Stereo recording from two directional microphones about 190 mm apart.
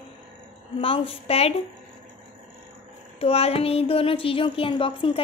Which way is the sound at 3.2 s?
30° left (ahead or behind).